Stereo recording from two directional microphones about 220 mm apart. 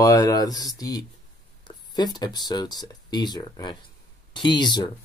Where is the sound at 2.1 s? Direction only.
20° left (ahead or behind).